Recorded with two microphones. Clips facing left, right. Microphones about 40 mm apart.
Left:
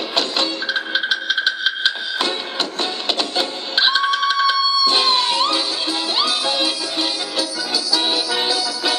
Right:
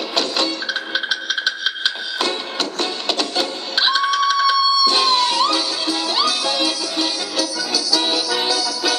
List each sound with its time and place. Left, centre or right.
0.1 s music: left
0.9 s printer: left